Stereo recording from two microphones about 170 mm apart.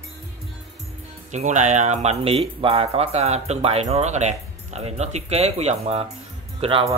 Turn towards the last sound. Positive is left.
turn(degrees=-35)  # may be behind; listen again after turning